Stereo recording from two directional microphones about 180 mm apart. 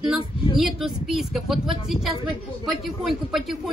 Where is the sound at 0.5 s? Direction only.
Centre (ahead or behind).